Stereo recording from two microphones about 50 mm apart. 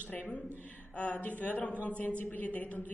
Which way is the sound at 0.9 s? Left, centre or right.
Left.